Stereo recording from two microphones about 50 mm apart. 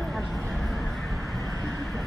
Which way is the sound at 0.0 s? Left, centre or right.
Centre.